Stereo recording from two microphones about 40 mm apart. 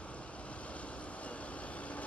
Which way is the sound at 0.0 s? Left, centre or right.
Left.